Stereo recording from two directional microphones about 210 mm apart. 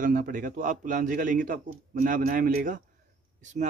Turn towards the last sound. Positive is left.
turn(degrees=-35)  # may be behind; listen again after turning